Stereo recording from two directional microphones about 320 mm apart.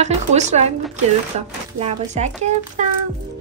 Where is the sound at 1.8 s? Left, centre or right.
Right.